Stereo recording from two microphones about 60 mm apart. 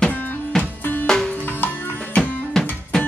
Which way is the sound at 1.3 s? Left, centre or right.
Left.